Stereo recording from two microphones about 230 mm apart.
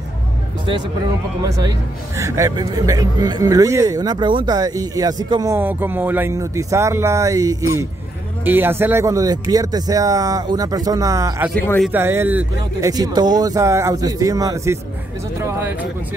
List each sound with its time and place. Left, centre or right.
1.4 s speech: centre
11.5 s a man's voice: centre
11.9 s speech: centre